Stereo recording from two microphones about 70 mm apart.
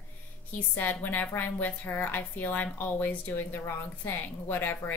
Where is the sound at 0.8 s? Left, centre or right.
Left.